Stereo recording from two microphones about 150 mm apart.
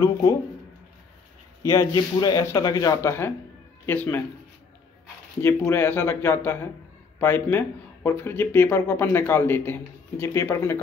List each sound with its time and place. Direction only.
0.0 s speech: 25° left (ahead or behind)
1.7 s speech: 25° left (ahead or behind)
5.7 s speech: 15° left (ahead or behind)